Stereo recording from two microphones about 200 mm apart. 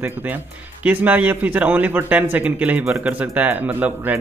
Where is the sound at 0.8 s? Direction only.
10° right (ahead or behind).